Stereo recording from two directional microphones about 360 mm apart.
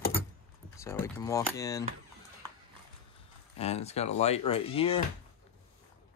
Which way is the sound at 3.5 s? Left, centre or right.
Centre.